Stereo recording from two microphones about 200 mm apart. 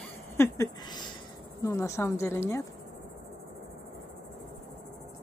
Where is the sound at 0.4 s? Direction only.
20° left (ahead or behind).